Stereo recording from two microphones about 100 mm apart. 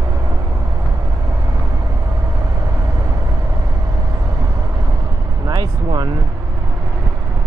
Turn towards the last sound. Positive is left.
turn(degrees=-45)  # may be behind; listen again after turning